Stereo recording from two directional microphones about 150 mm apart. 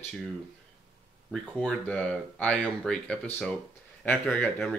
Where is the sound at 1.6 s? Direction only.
5° left (ahead or behind).